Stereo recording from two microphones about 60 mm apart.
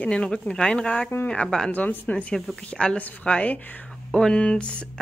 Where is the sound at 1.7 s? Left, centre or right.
Left.